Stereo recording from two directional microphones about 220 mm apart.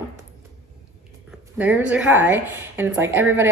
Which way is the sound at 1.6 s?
5° right (ahead or behind).